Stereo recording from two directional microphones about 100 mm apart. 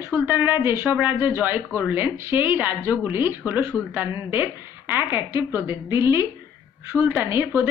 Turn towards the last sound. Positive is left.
turn(degrees=-25)  # may be behind; listen again after turning